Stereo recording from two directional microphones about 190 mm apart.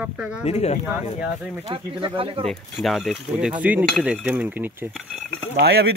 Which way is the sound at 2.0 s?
30° right (ahead or behind).